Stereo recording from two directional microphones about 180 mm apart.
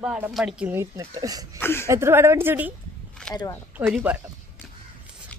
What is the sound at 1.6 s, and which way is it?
Speech, 15° left (ahead or behind).